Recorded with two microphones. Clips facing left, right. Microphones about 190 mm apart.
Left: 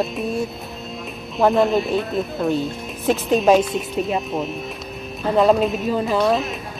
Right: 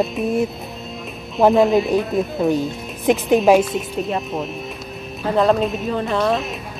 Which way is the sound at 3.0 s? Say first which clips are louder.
Right 3 dB; 15° right (ahead or behind).